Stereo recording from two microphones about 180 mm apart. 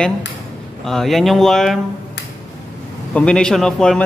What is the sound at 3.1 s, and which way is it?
Speech, 5° left (ahead or behind).